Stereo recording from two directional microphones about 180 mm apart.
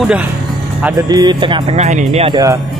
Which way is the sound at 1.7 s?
40° right (ahead or behind).